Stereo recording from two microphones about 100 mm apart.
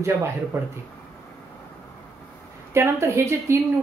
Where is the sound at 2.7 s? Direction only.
25° right (ahead or behind).